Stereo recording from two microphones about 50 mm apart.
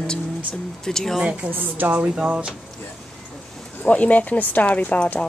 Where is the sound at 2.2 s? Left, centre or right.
Right.